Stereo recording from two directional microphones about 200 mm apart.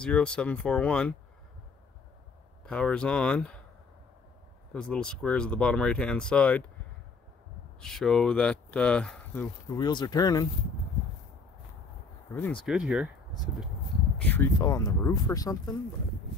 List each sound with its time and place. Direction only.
0.0 s speech: 5° left (ahead or behind)
2.6 s speech: 5° left (ahead or behind)
4.7 s speech: 5° left (ahead or behind)
7.8 s speech: centre (ahead or behind)
9.8 s speech: 20° left (ahead or behind)
12.3 s speech: 10° left (ahead or behind)
12.6 s speech: 5° right (ahead or behind)
14.2 s speech: 10° left (ahead or behind)